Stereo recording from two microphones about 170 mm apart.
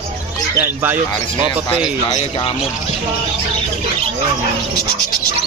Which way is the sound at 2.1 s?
30° left (ahead or behind).